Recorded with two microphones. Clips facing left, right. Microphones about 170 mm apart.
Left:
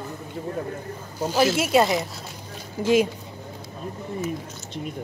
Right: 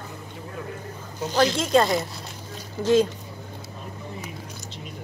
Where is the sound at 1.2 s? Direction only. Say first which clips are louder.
Left 1 dB; 10° left (ahead or behind).